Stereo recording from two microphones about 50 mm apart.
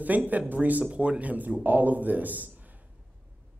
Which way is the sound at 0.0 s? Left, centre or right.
Right.